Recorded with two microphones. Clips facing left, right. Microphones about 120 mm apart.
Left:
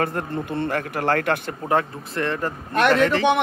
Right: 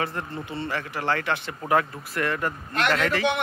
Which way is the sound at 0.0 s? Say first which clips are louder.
Left 5 dB; 50° left (ahead or behind).